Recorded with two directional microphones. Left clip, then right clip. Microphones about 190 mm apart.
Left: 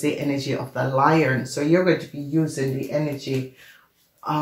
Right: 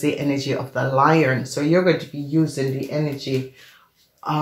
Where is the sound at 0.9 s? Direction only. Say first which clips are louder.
Right 2 dB; 35° right (ahead or behind).